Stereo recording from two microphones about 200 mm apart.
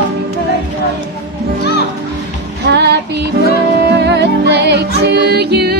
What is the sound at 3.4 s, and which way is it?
Music, 60° right (ahead or behind).